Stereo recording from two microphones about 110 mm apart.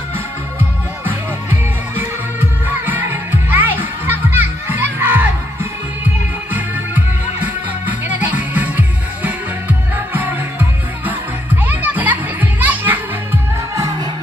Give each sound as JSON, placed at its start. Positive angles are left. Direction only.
{"t": 1.0, "sound": "music", "side_deg": -20}
{"t": 7.4, "sound": "music", "side_deg": -15}
{"t": 13.7, "sound": "music", "side_deg": -35}